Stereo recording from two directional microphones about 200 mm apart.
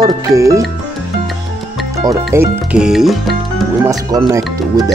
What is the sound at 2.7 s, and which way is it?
Speech, 5° right (ahead or behind).